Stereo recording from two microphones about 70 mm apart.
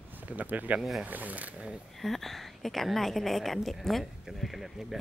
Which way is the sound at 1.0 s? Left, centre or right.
Right.